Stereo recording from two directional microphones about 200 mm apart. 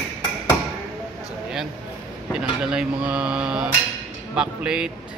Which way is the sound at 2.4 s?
5° right (ahead or behind).